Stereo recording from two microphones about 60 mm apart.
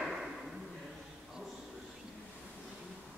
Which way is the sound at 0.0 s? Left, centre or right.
Centre.